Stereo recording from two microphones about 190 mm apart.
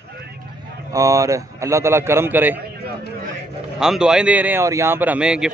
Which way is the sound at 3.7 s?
5° right (ahead or behind).